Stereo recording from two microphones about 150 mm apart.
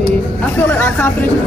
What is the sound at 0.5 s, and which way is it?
Speech, 10° left (ahead or behind).